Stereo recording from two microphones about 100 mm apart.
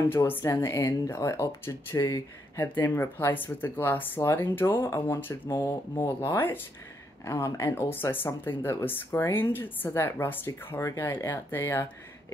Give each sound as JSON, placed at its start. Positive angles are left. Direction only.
{"t": 0.1, "sound": "speech", "side_deg": 25}
{"t": 2.6, "sound": "speech", "side_deg": 20}
{"t": 7.2, "sound": "speech", "side_deg": 30}